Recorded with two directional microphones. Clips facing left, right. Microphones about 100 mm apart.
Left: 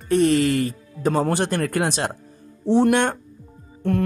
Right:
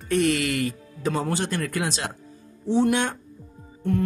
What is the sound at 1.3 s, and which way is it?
Speech, 55° left (ahead or behind).